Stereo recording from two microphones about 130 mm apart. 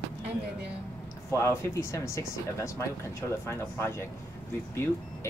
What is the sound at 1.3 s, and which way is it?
Speech, 20° left (ahead or behind).